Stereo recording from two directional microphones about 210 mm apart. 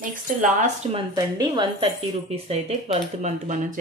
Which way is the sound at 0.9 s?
20° right (ahead or behind).